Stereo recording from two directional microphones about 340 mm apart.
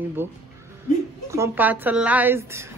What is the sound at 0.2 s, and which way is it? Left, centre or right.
A woman's voice, centre.